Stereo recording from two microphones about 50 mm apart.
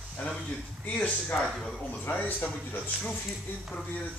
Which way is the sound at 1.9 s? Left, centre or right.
Left.